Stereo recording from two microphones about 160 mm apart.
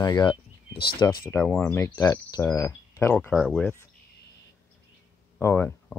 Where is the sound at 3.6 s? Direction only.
15° left (ahead or behind).